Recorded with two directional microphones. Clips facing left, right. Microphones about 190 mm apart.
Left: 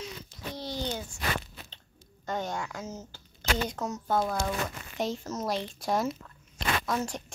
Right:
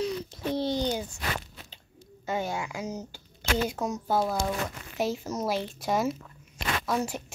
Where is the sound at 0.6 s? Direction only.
25° right (ahead or behind).